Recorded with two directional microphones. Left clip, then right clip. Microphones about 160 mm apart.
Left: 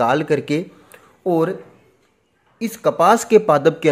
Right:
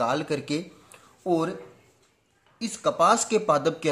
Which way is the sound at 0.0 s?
20° left (ahead or behind).